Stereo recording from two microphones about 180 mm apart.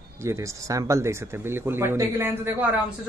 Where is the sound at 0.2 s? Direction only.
15° right (ahead or behind).